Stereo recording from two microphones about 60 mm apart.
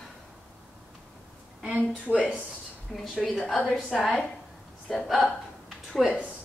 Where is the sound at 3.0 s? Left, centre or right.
Centre.